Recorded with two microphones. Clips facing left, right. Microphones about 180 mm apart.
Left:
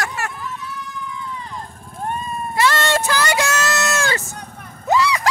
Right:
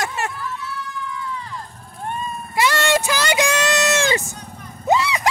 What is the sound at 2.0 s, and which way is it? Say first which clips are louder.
Vehicle: left 2 dB; 40° left (ahead or behind).